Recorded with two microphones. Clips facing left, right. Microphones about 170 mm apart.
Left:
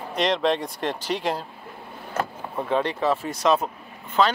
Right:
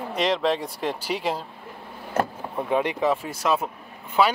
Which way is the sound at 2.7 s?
15° right (ahead or behind).